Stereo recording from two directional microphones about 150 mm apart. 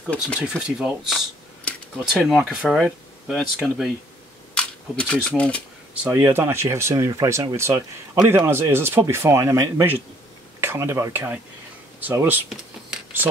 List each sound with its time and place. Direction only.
0.4 s speech: 5° right (ahead or behind)
1.6 s speech: 5° left (ahead or behind)
6.0 s speech: 15° right (ahead or behind)